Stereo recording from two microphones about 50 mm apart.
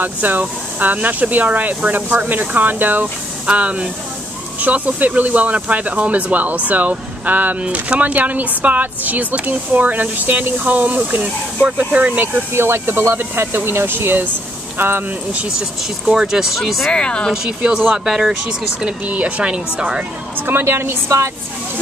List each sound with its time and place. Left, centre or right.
0.0 s speech: right
3.4 s a woman's voice: right
12.5 s speech: right
16.1 s speech: centre
16.9 s speech: centre
17.3 s speech: centre
19.0 s a woman's voice: right
20.3 s a woman's voice: right